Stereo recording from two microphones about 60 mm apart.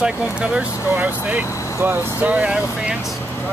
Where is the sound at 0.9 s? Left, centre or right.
Right.